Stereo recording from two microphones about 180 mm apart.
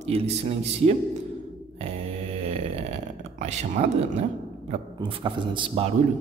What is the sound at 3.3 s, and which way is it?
Speech, 40° right (ahead or behind).